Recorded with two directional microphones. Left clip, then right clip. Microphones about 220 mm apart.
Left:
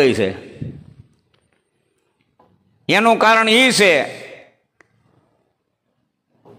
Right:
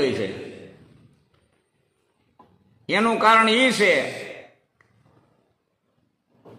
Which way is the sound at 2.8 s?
45° left (ahead or behind).